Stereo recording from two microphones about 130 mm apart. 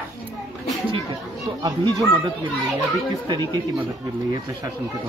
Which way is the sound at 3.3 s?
35° right (ahead or behind).